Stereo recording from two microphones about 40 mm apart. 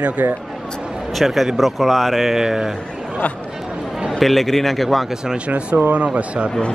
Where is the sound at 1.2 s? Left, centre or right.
Centre.